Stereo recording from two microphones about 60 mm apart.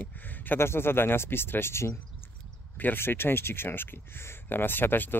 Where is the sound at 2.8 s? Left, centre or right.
Left.